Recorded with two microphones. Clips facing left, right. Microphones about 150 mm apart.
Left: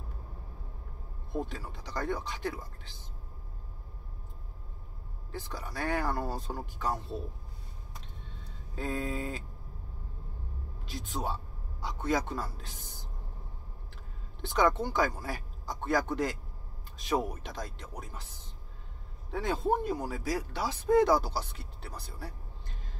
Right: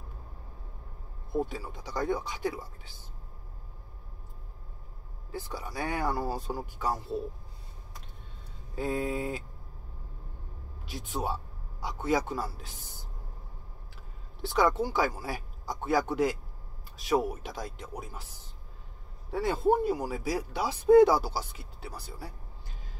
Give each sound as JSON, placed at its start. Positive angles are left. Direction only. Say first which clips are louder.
{"t": 1.3, "sound": "speech", "louder": "right 4 dB", "side_deg": -10}
{"t": 5.3, "sound": "speech", "louder": "right 2 dB", "side_deg": -10}
{"t": 8.7, "sound": "speech", "louder": "right 3 dB", "side_deg": -10}
{"t": 10.9, "sound": "speech", "louder": "right 2 dB", "side_deg": -10}
{"t": 14.4, "sound": "speech", "louder": "right 1 dB", "side_deg": -5}
{"t": 19.3, "sound": "speech", "louder": "right 4 dB", "side_deg": -5}